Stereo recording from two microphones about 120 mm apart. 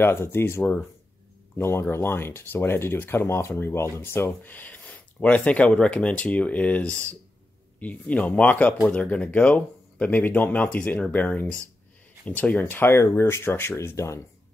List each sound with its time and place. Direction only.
0.0 s speech: 20° left (ahead or behind)